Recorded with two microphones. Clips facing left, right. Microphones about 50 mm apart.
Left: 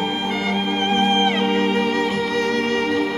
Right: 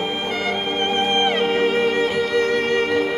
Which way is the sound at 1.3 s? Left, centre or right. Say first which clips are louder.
Even; centre.